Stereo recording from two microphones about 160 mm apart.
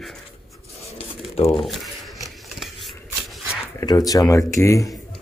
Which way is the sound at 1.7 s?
Centre (ahead or behind).